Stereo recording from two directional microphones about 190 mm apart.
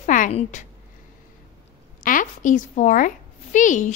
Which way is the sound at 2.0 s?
45° left (ahead or behind).